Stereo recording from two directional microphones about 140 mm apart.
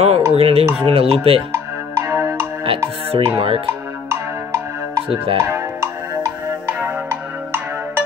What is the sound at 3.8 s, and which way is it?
Music, 20° right (ahead or behind).